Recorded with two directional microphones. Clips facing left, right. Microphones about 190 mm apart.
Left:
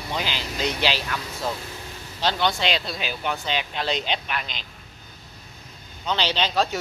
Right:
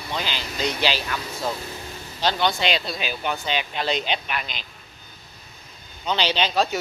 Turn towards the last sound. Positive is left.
turn(degrees=-10)  # may be behind; listen again after turning